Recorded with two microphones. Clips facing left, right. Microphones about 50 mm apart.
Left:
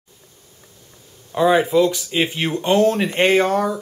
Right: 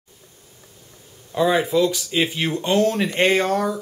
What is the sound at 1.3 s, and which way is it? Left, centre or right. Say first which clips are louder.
Speech: left 3 dB; centre.